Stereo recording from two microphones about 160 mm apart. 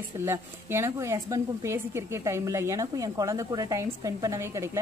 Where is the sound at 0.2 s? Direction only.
15° right (ahead or behind).